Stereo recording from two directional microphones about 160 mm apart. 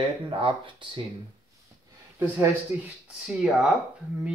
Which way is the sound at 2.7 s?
15° right (ahead or behind).